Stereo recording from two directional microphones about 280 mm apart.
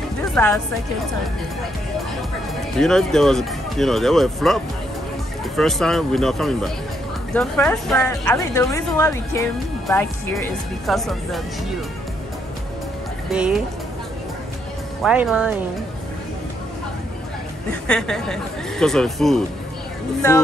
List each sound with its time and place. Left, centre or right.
0.3 s speech: centre
2.8 s speech: centre
5.6 s a woman's voice: centre
13.3 s speech: centre
15.0 s speech: centre
17.8 s a woman's voice: centre